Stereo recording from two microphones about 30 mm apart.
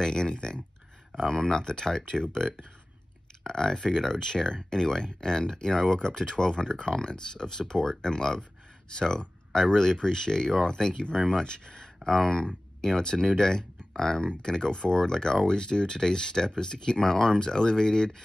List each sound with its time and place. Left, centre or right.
0.0 s speech: left